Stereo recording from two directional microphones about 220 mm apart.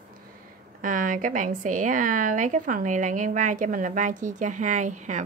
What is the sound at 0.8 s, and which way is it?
A woman's voice, 40° right (ahead or behind).